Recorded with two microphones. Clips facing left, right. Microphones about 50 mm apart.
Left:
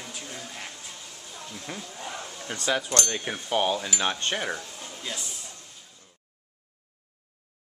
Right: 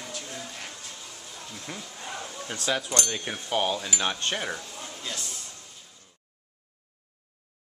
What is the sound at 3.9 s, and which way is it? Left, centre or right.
Cutlery, centre.